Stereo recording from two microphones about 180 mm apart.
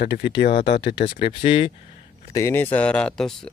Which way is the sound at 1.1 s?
30° left (ahead or behind).